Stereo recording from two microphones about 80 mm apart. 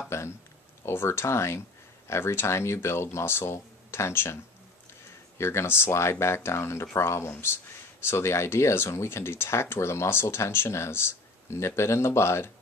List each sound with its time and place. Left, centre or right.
0.1 s speech: left
5.4 s speech: left